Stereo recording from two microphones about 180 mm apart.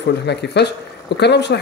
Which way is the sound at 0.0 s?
70° left (ahead or behind).